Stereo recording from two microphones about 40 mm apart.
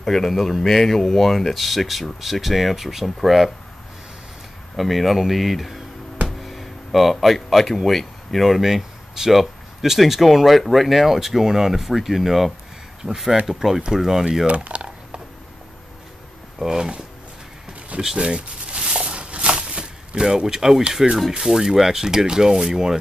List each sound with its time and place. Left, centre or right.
0.0 s speech: centre
4.7 s speech: centre
14.4 s a sound: right
16.5 s speech: centre
18.0 s speech: centre
18.7 s a sound: right
21.4 s speech: centre